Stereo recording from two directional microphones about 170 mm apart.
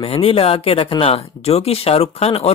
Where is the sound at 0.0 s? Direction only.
35° left (ahead or behind).